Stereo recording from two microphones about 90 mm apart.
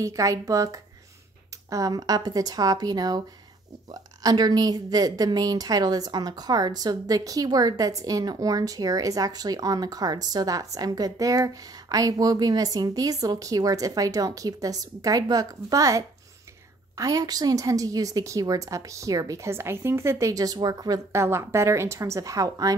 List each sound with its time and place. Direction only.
0.0 s a woman's voice: 40° right (ahead or behind)
21.1 s a woman's voice: 30° right (ahead or behind)